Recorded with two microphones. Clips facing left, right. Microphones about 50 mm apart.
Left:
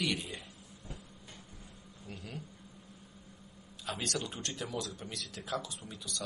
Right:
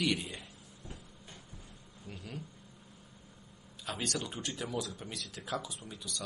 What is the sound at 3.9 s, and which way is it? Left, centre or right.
A man's voice, centre.